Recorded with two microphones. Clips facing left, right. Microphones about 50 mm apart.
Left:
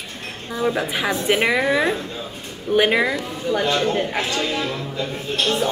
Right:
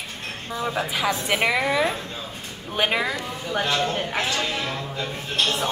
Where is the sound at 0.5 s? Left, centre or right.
Centre.